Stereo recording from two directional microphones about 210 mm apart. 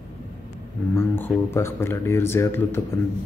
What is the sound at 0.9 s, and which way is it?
Speech, 10° left (ahead or behind).